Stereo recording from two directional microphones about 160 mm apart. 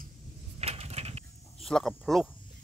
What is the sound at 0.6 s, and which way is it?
Coin, 40° right (ahead or behind).